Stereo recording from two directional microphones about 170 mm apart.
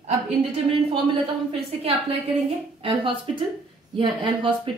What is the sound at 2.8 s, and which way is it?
A woman's voice, 30° right (ahead or behind).